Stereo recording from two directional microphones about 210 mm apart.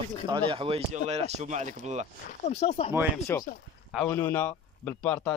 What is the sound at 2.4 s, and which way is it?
Speech, 30° left (ahead or behind).